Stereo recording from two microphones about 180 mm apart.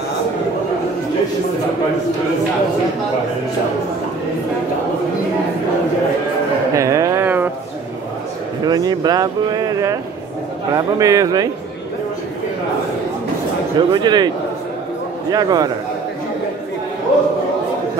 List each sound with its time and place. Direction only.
6.7 s a sound: 15° right (ahead or behind)
8.6 s speech: 20° right (ahead or behind)
13.7 s speech: 25° right (ahead or behind)
15.3 s speech: 20° right (ahead or behind)